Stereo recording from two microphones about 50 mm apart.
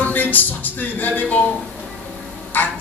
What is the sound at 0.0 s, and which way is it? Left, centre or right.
Speech, left.